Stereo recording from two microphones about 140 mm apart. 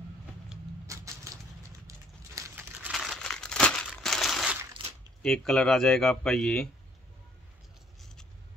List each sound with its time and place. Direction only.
0.8 s typewriter: 20° right (ahead or behind)
1.9 s clip-clop: 20° right (ahead or behind)
2.9 s crumpling: centre (ahead or behind)
5.2 s a man's voice: 5° left (ahead or behind)